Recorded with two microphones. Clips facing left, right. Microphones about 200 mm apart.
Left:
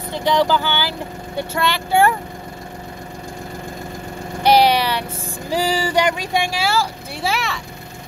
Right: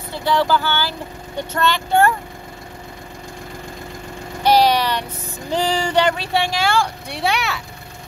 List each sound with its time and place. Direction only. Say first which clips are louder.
0.1 s speech: left 1 dB; 20° left (ahead or behind)
4.4 s speech: left 1 dB; 10° left (ahead or behind)